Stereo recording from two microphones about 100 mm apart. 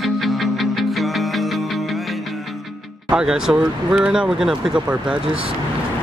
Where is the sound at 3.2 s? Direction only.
5° right (ahead or behind).